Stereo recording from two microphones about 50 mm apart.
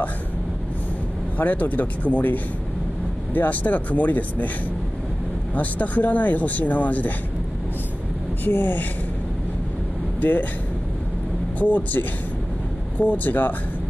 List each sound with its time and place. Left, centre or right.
1.4 s speech: left
5.5 s speech: left
8.5 s speech: left
11.6 s speech: left